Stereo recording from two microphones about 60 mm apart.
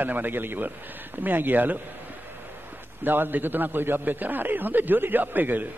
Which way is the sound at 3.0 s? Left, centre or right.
Right.